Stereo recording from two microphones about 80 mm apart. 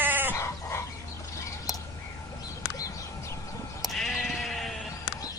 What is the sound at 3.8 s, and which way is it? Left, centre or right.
Sheep, centre.